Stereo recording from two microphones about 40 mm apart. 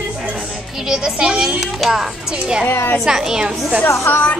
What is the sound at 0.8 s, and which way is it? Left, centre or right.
A child's voice, centre.